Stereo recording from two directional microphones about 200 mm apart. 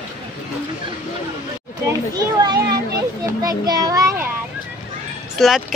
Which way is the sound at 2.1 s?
20° right (ahead or behind).